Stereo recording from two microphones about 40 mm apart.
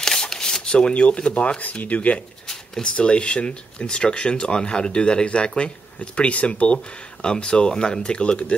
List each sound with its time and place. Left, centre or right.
0.0 s speech: centre; by 2.1 s left
2.4 s a sound: centre
3.0 s speech: left